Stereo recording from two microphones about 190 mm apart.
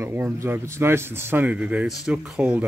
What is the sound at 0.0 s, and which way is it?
A man's voice, 10° right (ahead or behind).